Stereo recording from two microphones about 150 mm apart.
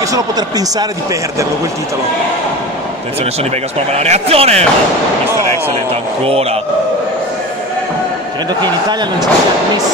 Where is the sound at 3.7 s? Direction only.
45° right (ahead or behind).